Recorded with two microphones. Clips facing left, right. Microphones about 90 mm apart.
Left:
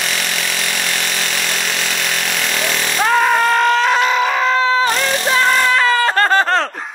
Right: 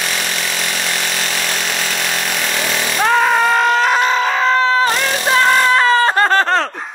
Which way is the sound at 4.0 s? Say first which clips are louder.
Even; 35° right (ahead or behind).